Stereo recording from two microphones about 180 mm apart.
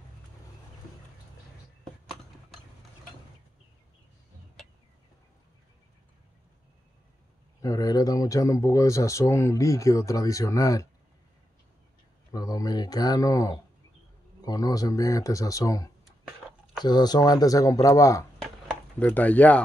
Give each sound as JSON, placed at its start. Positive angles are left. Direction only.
{"t": 7.6, "sound": "speech", "side_deg": 20}
{"t": 12.3, "sound": "a sound", "side_deg": 20}
{"t": 14.4, "sound": "speech", "side_deg": 20}
{"t": 18.4, "sound": "chop", "side_deg": 5}